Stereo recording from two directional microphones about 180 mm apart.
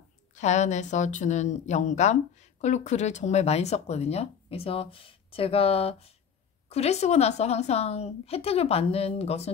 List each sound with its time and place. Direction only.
0.3 s a woman's voice: 40° left (ahead or behind)